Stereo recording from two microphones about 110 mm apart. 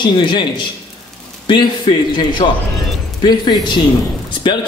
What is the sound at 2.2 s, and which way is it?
Speech, 45° left (ahead or behind).